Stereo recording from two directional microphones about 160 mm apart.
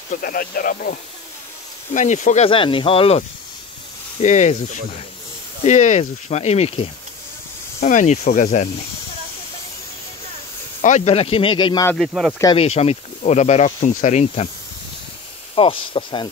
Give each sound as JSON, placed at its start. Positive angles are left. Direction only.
{"t": 0.1, "sound": "speech", "side_deg": 65}
{"t": 2.0, "sound": "speech", "side_deg": 50}
{"t": 2.5, "sound": "speech", "side_deg": 35}
{"t": 5.7, "sound": "speech", "side_deg": 50}
{"t": 10.8, "sound": "speech", "side_deg": 45}
{"t": 12.1, "sound": "speech", "side_deg": -5}
{"t": 12.5, "sound": "speech", "side_deg": 40}
{"t": 15.5, "sound": "speech", "side_deg": 35}